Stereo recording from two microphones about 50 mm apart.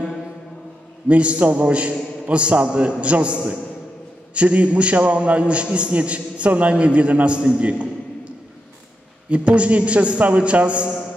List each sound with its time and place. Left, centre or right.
1.0 s a man's voice: right
9.3 s a man's voice: right